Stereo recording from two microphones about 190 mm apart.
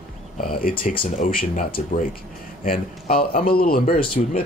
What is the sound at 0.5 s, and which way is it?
Speech, 50° left (ahead or behind).